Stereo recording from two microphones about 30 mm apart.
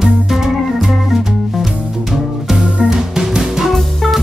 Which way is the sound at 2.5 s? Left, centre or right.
Right.